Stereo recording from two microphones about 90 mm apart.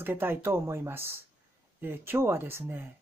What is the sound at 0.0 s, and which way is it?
Speech, 25° right (ahead or behind).